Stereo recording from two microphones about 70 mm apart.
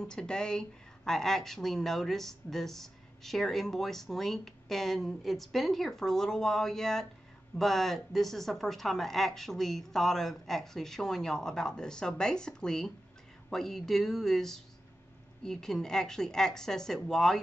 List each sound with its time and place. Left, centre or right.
0.0 s a woman's voice: centre